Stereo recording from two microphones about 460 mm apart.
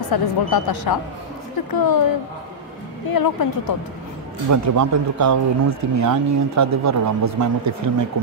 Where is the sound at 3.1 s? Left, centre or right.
Left.